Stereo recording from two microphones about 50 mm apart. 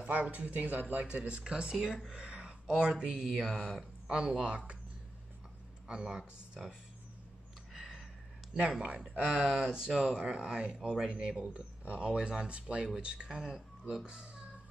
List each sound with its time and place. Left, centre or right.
0.0 s speech: right
2.1 s a sound: centre
2.9 s speech: centre
5.9 s speech: centre
7.7 s a sound: centre
9.0 s speech: centre
13.4 s speech: centre
14.0 s speech: centre